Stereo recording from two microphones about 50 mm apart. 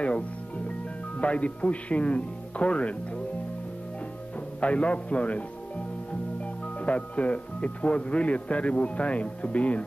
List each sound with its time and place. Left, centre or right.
0.7 s speech: left
4.6 s speech: left
6.4 s speech: left